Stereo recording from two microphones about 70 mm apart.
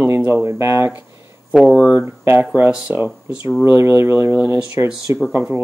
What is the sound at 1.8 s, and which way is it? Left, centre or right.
Speech, left.